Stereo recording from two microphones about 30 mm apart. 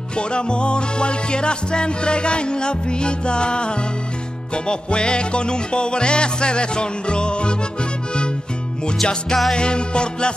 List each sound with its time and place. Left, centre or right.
0.2 s music: left
8.8 s music: left